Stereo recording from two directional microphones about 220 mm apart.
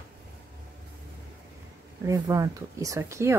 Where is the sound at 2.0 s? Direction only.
15° right (ahead or behind).